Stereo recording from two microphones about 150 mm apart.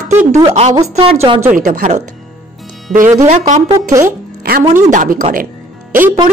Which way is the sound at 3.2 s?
50° right (ahead or behind).